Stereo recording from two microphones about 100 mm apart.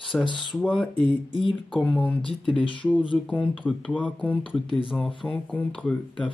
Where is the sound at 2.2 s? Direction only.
60° left (ahead or behind).